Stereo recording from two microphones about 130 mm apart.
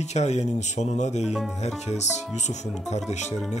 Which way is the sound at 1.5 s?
60° left (ahead or behind).